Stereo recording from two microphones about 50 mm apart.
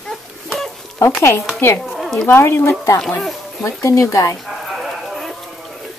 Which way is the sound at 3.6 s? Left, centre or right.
Left.